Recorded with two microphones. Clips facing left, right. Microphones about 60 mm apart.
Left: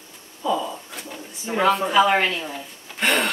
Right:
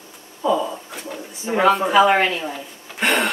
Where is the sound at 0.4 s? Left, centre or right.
Centre.